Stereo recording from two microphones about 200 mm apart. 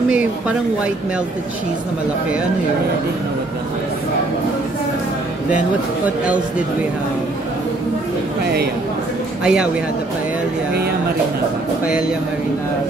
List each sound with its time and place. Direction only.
0.1 s speech: 5° right (ahead or behind)
6.0 s speech: 5° right (ahead or behind)
9.4 s speech: 5° right (ahead or behind)